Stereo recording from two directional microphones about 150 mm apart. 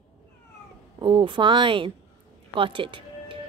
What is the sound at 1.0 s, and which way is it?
Speech, 35° right (ahead or behind).